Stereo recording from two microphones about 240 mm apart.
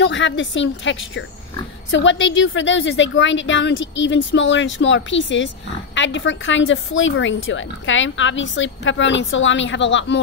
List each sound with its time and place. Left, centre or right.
0.0 s a woman's voice: left